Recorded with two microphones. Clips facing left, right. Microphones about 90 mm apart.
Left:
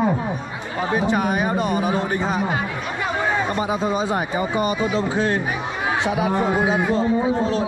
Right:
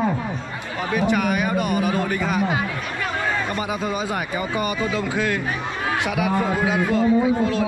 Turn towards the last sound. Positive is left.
turn(degrees=25)  # may be behind; listen again after turning